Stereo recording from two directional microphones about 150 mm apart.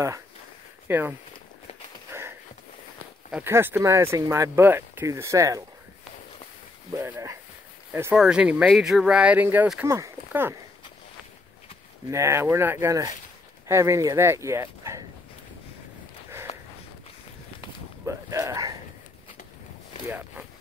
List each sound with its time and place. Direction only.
0.8 s speech: 15° right (ahead or behind)
2.1 s a sound: 15° right (ahead or behind)
3.4 s speech: 15° right (ahead or behind)
6.9 s speech: 20° right (ahead or behind)
12.1 s speech: 20° right (ahead or behind)
16.5 s walk: 40° left (ahead or behind)
18.0 s a sound: 20° right (ahead or behind)